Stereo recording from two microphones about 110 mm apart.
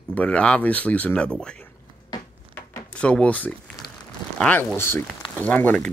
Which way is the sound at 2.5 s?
15° left (ahead or behind).